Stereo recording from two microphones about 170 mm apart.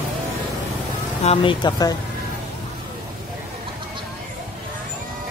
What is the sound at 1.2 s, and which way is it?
Speech, 35° left (ahead or behind).